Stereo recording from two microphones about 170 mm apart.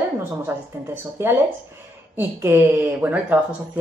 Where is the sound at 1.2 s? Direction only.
15° right (ahead or behind).